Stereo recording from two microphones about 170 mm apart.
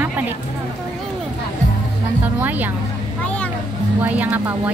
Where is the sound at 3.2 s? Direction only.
5° left (ahead or behind).